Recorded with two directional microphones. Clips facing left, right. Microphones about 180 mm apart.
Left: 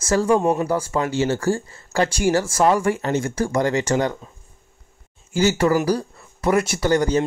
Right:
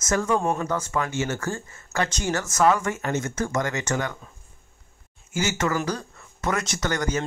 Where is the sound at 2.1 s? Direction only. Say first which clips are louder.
Left 8 dB; 10° left (ahead or behind).